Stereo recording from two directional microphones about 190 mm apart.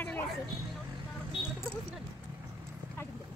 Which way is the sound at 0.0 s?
10° left (ahead or behind).